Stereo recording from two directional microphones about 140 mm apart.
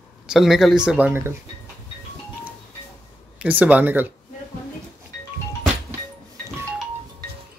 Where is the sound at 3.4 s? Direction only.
10° right (ahead or behind).